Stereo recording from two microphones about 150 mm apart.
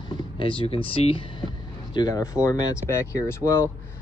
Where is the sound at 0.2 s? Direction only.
35° left (ahead or behind).